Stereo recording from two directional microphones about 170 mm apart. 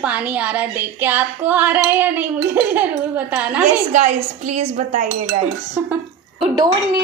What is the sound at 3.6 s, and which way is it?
A woman's voice, 45° right (ahead or behind).